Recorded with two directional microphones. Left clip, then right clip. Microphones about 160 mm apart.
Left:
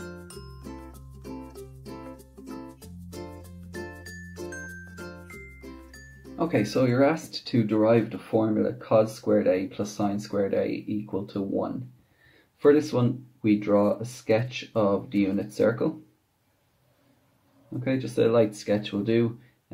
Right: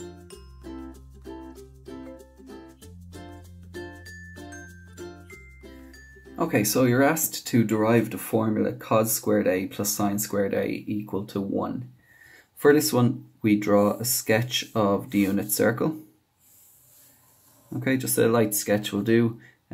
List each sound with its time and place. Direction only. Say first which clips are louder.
6.3 s speech: right 1 dB; 30° right (ahead or behind)
12.5 s a sound: right 1 dB; 35° right (ahead or behind)
12.9 s speech: right 3 dB; 50° right (ahead or behind)
17.8 s speech: right 1 dB; 45° right (ahead or behind)